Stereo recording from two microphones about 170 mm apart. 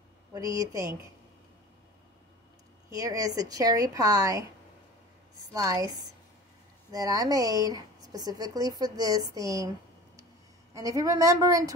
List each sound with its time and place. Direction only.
0.3 s speech: 20° right (ahead or behind)
2.9 s speech: 20° right (ahead or behind)
5.5 s speech: 20° right (ahead or behind)
6.9 s speech: 20° right (ahead or behind)
10.7 s speech: 20° right (ahead or behind)